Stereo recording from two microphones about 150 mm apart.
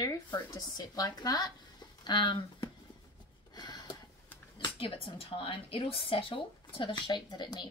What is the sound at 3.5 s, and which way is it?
Gasp, 30° left (ahead or behind).